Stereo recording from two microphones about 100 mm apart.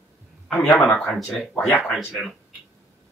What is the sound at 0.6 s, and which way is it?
Speech, centre (ahead or behind).